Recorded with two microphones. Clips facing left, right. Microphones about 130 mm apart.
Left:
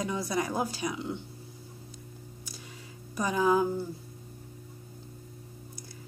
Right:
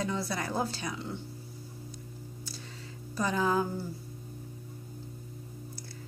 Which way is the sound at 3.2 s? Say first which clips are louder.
Left 3 dB; 15° left (ahead or behind).